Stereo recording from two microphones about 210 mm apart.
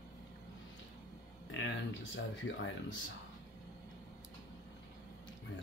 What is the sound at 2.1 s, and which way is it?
Speech, 65° left (ahead or behind).